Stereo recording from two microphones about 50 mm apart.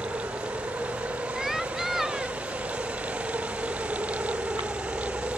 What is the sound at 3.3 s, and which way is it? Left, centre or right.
Engine, right.